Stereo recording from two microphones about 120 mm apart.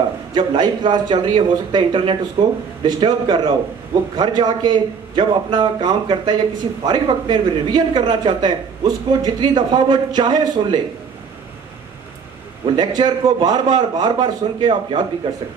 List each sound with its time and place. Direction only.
0.3 s a man's voice: 40° right (ahead or behind)
12.7 s a man's voice: 35° right (ahead or behind)